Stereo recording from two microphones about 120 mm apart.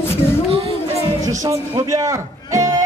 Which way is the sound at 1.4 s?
30° right (ahead or behind).